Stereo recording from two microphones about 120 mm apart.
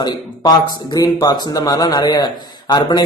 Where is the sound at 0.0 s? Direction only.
35° left (ahead or behind).